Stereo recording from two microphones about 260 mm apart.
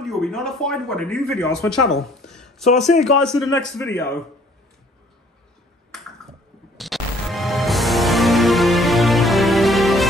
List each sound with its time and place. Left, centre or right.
0.0 s a woman's voice: centre
3.8 s a man's voice: left
6.8 s music: centre